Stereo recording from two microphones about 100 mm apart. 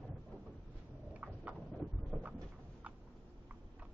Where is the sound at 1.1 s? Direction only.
15° right (ahead or behind).